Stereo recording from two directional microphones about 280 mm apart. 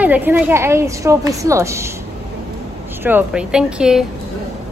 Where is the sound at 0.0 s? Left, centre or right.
Centre.